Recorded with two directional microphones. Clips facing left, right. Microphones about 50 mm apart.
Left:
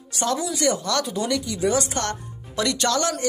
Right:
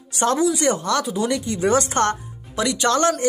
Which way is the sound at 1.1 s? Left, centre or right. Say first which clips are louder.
Right 2 dB; centre.